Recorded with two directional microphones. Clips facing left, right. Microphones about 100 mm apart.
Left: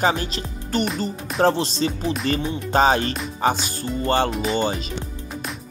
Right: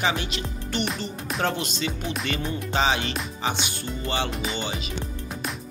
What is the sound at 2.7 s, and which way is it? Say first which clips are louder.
Music: left 7 dB; 45° left (ahead or behind).